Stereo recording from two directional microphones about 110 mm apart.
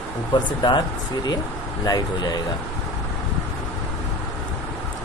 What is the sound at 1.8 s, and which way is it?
Speech, 40° left (ahead or behind).